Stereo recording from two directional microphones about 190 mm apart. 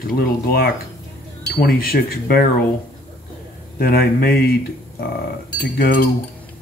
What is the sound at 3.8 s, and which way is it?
Speech, 50° left (ahead or behind).